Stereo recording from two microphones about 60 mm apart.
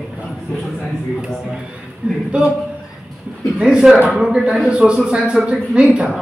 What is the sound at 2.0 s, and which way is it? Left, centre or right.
Speech, right.